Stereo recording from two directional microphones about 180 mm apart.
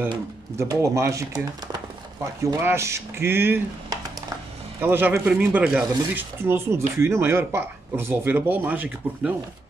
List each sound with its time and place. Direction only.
0.6 s speech: 15° right (ahead or behind)
2.4 s speech: 15° right (ahead or behind)